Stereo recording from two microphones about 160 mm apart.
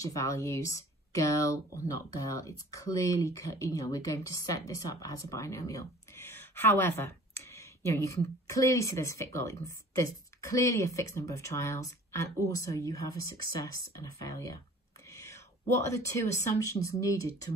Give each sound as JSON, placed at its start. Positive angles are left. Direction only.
{"t": 0.0, "sound": "speech", "side_deg": 20}
{"t": 15.0, "sound": "whispering", "side_deg": 20}
{"t": 16.3, "sound": "speech", "side_deg": 20}